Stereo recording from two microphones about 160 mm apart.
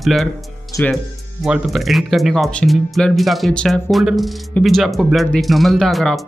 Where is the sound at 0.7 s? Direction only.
20° left (ahead or behind).